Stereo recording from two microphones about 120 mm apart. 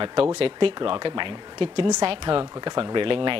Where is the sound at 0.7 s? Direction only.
40° right (ahead or behind).